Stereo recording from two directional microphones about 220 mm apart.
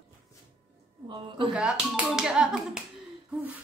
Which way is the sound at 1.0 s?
20° right (ahead or behind).